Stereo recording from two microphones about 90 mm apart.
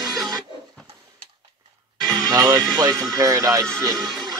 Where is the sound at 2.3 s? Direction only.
40° right (ahead or behind).